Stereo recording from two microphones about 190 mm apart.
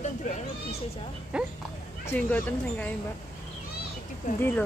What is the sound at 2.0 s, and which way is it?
Speech, 10° left (ahead or behind).